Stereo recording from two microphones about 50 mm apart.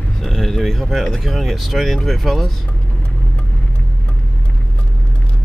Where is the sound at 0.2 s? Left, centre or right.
Centre.